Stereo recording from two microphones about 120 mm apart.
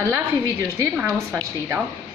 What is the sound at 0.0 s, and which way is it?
A woman's voice, 20° right (ahead or behind).